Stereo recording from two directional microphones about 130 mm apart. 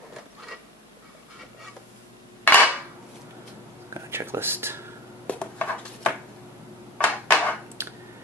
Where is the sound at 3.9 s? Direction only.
20° right (ahead or behind).